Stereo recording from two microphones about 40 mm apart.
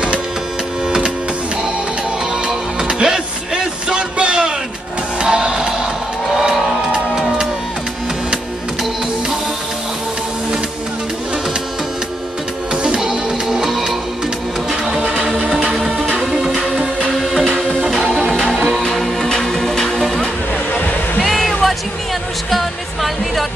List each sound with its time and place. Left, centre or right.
0.8 s music: right
2.4 s music: right
13.0 s music: centre
16.2 s music: centre
17.2 s music: centre
18.3 s music: centre
20.7 s music: left
21.2 s music: centre